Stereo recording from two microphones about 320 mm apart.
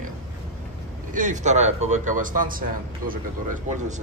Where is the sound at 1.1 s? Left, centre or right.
Right.